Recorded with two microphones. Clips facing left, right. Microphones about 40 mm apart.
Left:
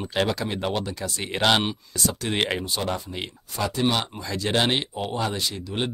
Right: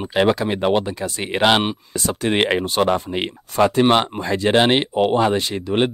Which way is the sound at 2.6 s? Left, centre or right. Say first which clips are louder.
Right 9 dB; right.